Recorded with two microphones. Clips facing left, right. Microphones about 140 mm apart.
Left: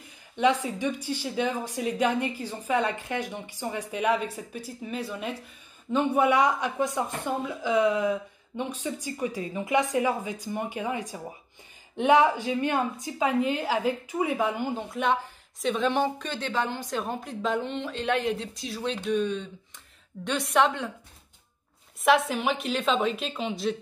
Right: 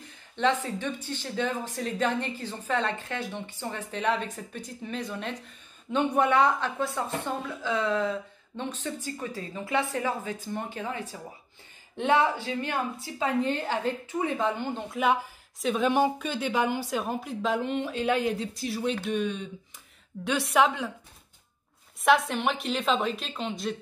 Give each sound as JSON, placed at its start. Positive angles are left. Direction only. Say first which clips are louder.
{"t": 0.4, "sound": "speech", "louder": "left 2 dB", "side_deg": 10}
{"t": 15.6, "sound": "a woman's voice", "louder": "right 1 dB", "side_deg": -5}
{"t": 20.2, "sound": "a woman's voice", "louder": "even", "side_deg": -5}
{"t": 22.0, "sound": "a woman's voice", "louder": "left 1 dB", "side_deg": 0}